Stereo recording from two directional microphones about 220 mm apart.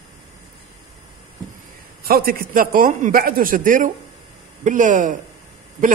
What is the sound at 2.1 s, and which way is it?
A man's voice, 40° right (ahead or behind).